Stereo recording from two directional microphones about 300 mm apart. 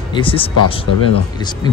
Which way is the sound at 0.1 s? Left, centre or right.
Centre.